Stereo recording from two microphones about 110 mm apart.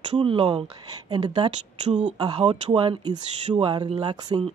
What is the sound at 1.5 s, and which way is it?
Speech, 90° right.